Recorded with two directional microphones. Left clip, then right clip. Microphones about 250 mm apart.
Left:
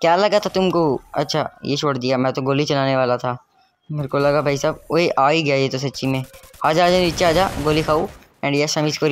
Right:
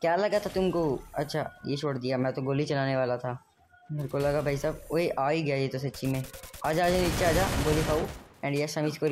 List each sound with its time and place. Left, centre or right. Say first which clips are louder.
0.0 s speech: left 10 dB; centre
7.4 s speech: left 9 dB; centre
8.4 s speech: left 11 dB; centre